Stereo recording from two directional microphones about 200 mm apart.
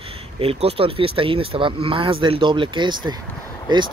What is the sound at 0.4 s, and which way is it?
Speech, 30° right (ahead or behind).